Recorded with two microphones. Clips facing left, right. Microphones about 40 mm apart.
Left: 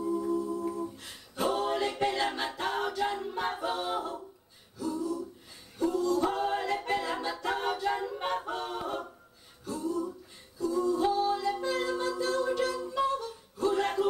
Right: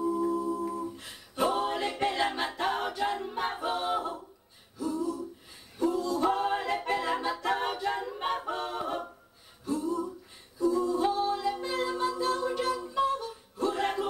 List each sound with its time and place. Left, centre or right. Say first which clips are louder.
0.0 s a sound: right 2 dB; centre
0.6 s a capella: even; centre
3.0 s music: right 1 dB; centre
4.7 s a capella: right 1 dB; centre
5.8 s singing: even; centre
7.3 s a capella: right 1 dB; centre
9.7 s a sound: right 2 dB; centre
10.6 s a capella: right 1 dB; centre
11.2 s a sound: left 1 dB; centre